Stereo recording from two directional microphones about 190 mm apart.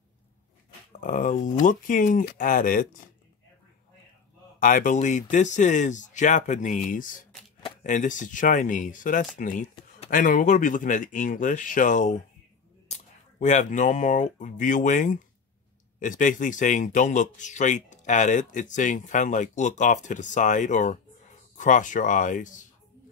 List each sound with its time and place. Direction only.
1.0 s speech: 45° left (ahead or behind)
4.6 s speech: 45° left (ahead or behind)